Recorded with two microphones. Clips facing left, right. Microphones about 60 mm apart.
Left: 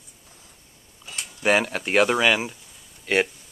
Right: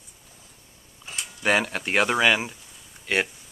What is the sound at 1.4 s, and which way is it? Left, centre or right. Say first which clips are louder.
Speech: left 2 dB; centre.